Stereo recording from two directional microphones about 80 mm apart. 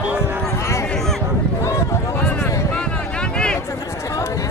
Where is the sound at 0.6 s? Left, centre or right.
Left.